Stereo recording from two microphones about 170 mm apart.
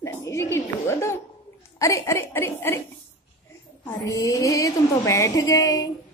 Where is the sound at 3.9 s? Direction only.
20° left (ahead or behind).